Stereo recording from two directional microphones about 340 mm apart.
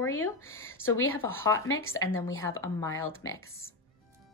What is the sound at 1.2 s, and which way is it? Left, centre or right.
Speech, centre.